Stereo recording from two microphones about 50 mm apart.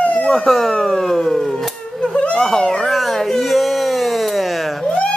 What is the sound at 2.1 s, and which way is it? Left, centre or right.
Baby cry, left.